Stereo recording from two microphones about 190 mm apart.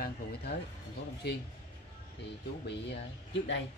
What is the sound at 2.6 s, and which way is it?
Speech, 65° left (ahead or behind).